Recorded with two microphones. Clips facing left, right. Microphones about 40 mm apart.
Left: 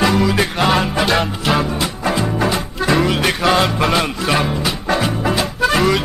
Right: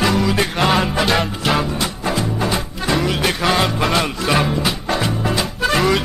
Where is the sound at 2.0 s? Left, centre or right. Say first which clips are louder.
Left 3 dB; centre.